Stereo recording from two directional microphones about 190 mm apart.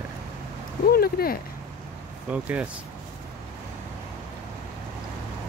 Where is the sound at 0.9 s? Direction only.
55° left (ahead or behind).